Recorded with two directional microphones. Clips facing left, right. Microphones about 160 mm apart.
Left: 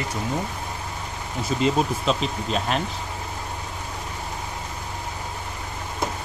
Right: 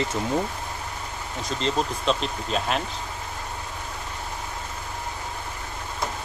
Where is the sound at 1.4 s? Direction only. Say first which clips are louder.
Left 4 dB; 5° left (ahead or behind).